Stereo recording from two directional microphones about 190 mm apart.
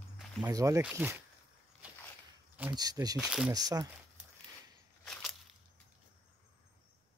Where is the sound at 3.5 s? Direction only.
20° right (ahead or behind).